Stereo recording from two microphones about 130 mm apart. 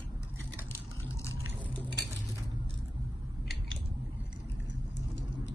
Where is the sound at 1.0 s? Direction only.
20° left (ahead or behind).